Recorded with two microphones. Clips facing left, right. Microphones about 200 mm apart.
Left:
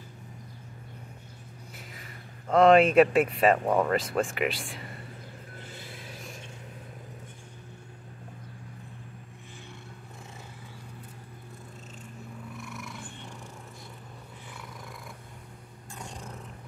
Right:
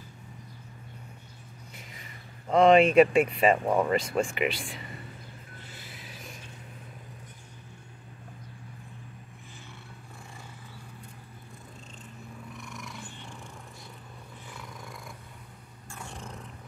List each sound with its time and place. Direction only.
2.5 s speech: centre (ahead or behind)
12.5 s cat: centre (ahead or behind)
15.9 s a sound: 15° left (ahead or behind)